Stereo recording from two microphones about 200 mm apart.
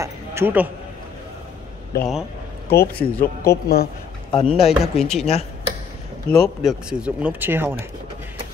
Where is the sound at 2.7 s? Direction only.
50° left (ahead or behind).